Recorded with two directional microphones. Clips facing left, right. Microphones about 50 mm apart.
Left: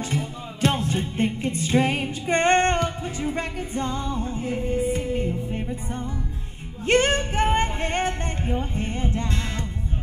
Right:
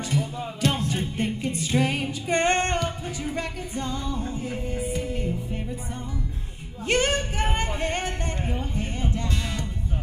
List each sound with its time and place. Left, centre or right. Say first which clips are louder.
0.0 s music: right 1 dB; left
6.9 s speech: left 3 dB; left